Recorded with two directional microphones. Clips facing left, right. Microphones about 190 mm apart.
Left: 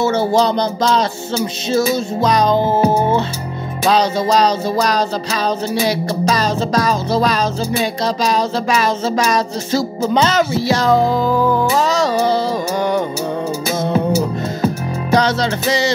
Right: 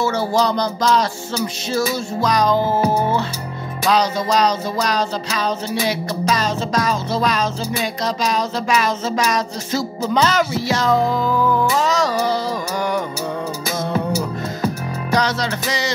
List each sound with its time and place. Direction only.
0.0 s music: 25° left (ahead or behind)